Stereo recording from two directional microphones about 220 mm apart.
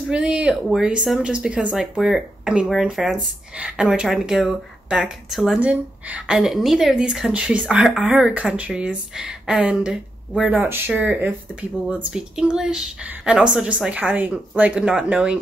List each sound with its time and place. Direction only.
0.1 s speech: 5° right (ahead or behind)